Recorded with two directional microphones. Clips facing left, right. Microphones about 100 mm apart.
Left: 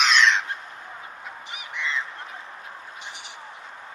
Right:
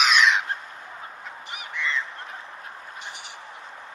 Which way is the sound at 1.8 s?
20° left (ahead or behind).